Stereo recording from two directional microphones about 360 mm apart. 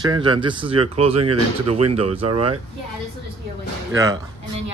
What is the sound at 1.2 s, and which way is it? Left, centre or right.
Speech, right.